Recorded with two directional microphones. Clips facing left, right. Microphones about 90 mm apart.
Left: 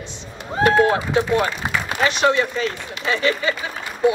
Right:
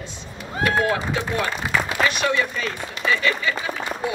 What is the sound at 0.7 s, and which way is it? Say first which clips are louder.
Speech: left 5 dB; 30° left (ahead or behind).